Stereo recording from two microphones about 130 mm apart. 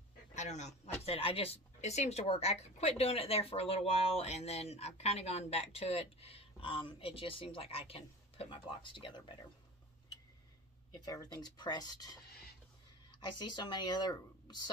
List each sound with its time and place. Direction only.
0.3 s a man's voice: 65° left (ahead or behind)
1.0 s speech: 45° left (ahead or behind)
11.1 s speech: 30° left (ahead or behind)
13.4 s speech: 35° left (ahead or behind)